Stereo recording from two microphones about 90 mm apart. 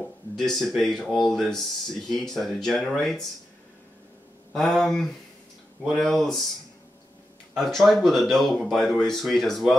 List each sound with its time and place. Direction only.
0.0 s speech: 5° left (ahead or behind)
4.6 s speech: 5° left (ahead or behind)
7.5 s speech: 5° left (ahead or behind)